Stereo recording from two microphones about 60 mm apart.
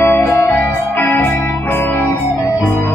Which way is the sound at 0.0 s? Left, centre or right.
Left.